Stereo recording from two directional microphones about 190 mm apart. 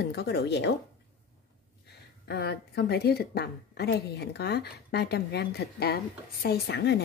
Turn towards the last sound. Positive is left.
turn(degrees=60)  # may be behind; listen again after turning